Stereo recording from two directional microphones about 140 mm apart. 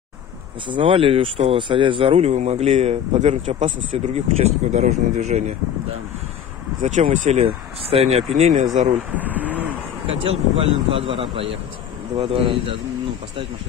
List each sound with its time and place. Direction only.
0.7 s speech: 40° right (ahead or behind); by 3.7 s 60° right (ahead or behind)
3.9 s speech: 50° right (ahead or behind)
6.8 s speech: 60° right (ahead or behind)
7.4 s speech: 45° right (ahead or behind)
8.4 s speech: 55° right (ahead or behind)
9.1 s vehicle: 10° right (ahead or behind)
10.6 s speech: 40° right (ahead or behind)